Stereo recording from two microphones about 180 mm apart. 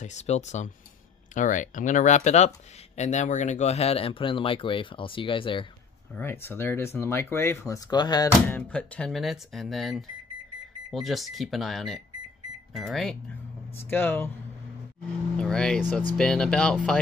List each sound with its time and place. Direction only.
0.0 s speech: 40° left (ahead or behind)
6.1 s speech: 10° left (ahead or behind)
8.5 s speech: 10° left (ahead or behind)
15.3 s speech: 5° left (ahead or behind)